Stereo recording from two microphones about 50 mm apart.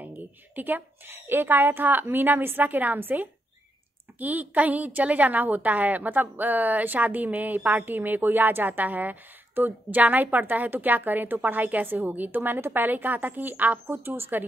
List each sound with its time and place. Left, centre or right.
0.6 s a woman's voice: right
13.8 s a woman's voice: right